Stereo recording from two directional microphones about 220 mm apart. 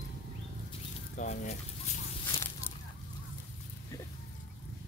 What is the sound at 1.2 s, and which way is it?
Speech, 30° left (ahead or behind).